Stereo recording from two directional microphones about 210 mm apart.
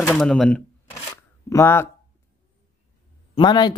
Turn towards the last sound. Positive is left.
turn(degrees=20)  # may be behind; listen again after turning